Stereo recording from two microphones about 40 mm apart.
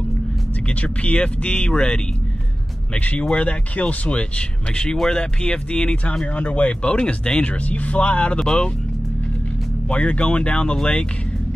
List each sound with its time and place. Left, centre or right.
0.7 s speech: left
3.0 s speech: left
8.4 s speech: left
9.8 s speech: left